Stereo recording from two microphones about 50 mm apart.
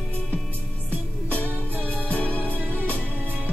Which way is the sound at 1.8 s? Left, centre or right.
Left.